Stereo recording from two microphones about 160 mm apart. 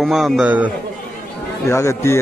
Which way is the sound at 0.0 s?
Centre (ahead or behind).